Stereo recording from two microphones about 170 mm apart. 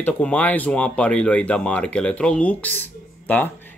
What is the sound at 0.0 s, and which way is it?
Speech, 10° left (ahead or behind).